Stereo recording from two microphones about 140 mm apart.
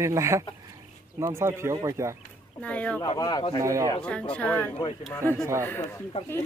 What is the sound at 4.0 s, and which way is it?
Speech, 10° left (ahead or behind).